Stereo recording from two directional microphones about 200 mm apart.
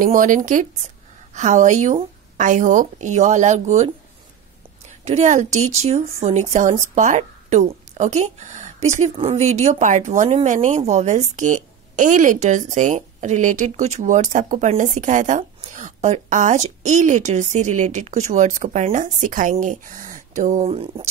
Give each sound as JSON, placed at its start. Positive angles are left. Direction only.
{"t": 0.0, "sound": "speech", "side_deg": -40}
{"t": 5.0, "sound": "speech", "side_deg": -35}